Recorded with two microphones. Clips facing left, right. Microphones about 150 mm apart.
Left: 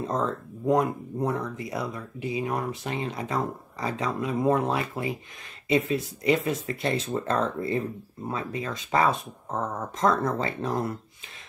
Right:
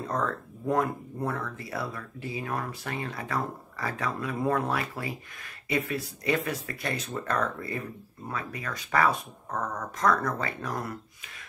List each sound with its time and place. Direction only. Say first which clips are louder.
0.0 s speech: left 3 dB; 20° left (ahead or behind)